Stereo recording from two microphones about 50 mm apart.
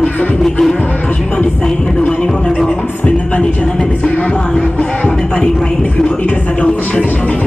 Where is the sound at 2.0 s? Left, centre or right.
Left.